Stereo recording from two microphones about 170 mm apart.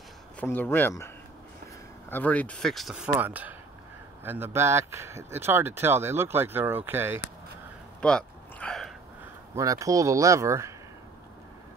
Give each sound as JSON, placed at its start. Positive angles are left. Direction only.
{"t": 0.4, "sound": "speech", "side_deg": 10}
{"t": 8.0, "sound": "a sound", "side_deg": 5}
{"t": 9.6, "sound": "speech", "side_deg": -20}